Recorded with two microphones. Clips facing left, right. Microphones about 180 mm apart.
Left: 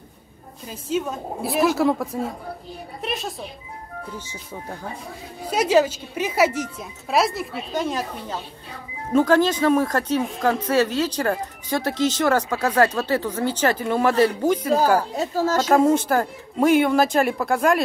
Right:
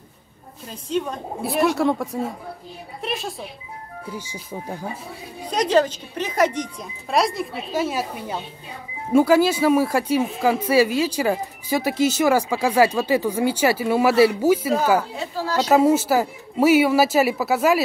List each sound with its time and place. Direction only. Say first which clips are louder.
0.7 s speech: even; 5° left (ahead or behind)
4.1 s speech: right 3 dB; 10° right (ahead or behind)
5.5 s speech: left 1 dB; 5° left (ahead or behind)
15.1 s speech: left 3 dB; 45° left (ahead or behind)
15.7 s speech: right 2 dB; 5° right (ahead or behind)